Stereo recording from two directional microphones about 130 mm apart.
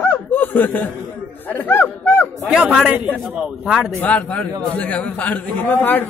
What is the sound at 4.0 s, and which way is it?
Speech, 10° left (ahead or behind).